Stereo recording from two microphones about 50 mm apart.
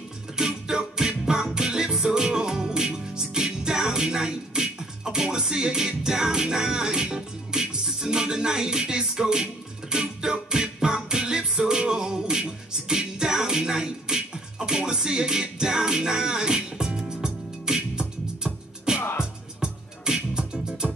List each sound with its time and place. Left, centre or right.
0.4 s music: centre
18.9 s music: left
19.6 s music: centre